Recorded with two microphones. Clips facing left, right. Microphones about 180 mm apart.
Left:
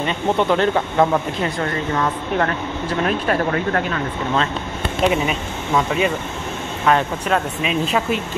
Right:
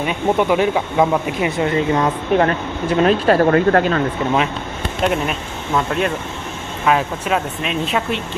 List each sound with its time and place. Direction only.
0.0 s speech: 10° right (ahead or behind); by 3.4 s 30° right (ahead or behind)
3.4 s speech: 45° right (ahead or behind)
5.0 s speech: centre (ahead or behind)